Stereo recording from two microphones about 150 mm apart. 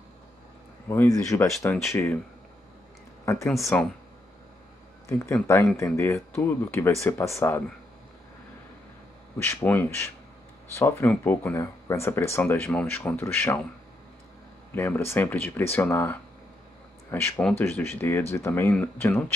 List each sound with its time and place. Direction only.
0.8 s speech: 20° left (ahead or behind)
3.7 s speech: 10° left (ahead or behind)
5.0 s speech: 20° left (ahead or behind)
9.7 s speech: 15° left (ahead or behind)
14.7 s speech: 15° left (ahead or behind)